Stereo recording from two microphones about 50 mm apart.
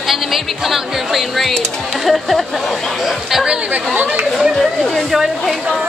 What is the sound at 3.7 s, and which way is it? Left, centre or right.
Speech, right.